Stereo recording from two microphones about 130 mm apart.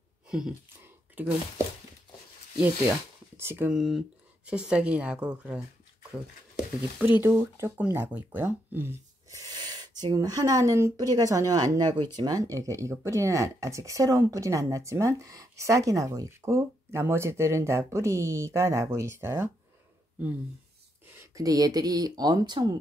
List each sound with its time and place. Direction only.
0.3 s speech: 5° right (ahead or behind)
2.6 s speech: 15° right (ahead or behind)
3.7 s speech: centre (ahead or behind)
7.0 s speech: 15° right (ahead or behind)
21.4 s speech: 25° right (ahead or behind)